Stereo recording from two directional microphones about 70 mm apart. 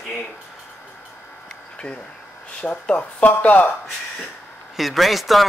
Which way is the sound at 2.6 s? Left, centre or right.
Centre.